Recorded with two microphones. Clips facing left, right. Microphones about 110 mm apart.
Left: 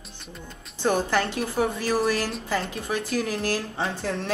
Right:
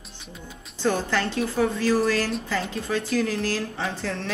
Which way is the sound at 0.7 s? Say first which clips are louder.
Left 1 dB; 15° left (ahead or behind).